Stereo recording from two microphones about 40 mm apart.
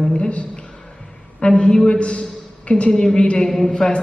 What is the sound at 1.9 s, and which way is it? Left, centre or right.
A man's voice, left.